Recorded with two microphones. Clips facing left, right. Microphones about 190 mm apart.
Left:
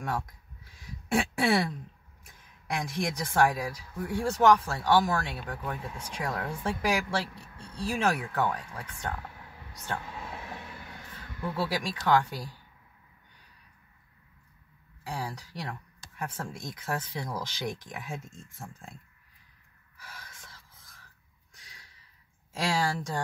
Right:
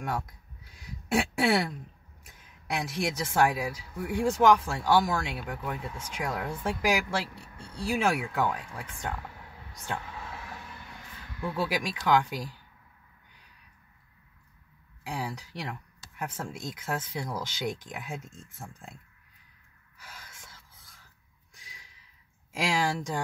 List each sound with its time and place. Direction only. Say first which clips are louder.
1.0 s speech: right 1 dB; 5° right (ahead or behind)
2.8 s speech: right 1 dB; 5° right (ahead or behind)
10.2 s vehicle: left 2 dB; 20° left (ahead or behind)
11.5 s speech: right 1 dB; 10° right (ahead or behind)
15.0 s speech: right 1 dB; 10° right (ahead or behind)
22.5 s speech: right 1 dB; 10° right (ahead or behind)